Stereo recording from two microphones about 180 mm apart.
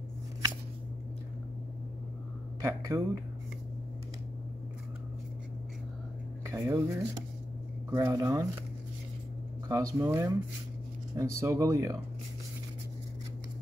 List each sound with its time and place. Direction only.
2.6 s speech: 20° right (ahead or behind)
6.4 s speech: 15° right (ahead or behind)
9.7 s speech: 20° right (ahead or behind)